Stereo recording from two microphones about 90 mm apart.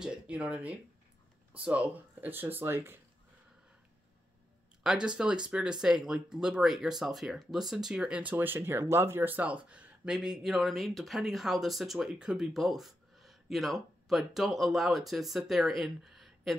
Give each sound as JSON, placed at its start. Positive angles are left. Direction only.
{"t": 0.0, "sound": "speech", "side_deg": -10}
{"t": 4.8, "sound": "speech", "side_deg": -10}